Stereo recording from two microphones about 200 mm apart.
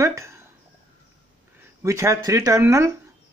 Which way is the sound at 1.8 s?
15° right (ahead or behind).